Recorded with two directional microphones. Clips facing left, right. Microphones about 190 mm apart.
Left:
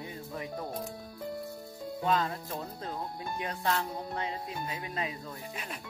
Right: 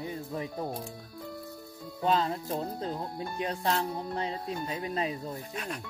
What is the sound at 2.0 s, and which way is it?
Speech, 30° right (ahead or behind).